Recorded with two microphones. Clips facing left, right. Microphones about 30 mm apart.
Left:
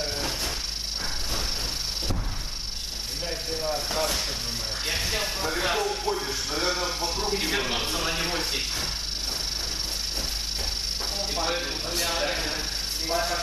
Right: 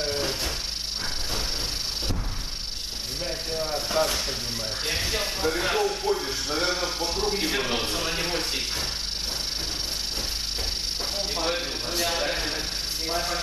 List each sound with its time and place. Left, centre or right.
3.3 s a sound: centre
6.6 s a man's voice: centre
7.1 s speech: right
7.3 s a man's voice: centre
12.0 s a man's voice: centre